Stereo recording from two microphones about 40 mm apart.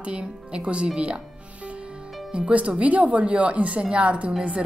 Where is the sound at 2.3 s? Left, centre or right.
Right.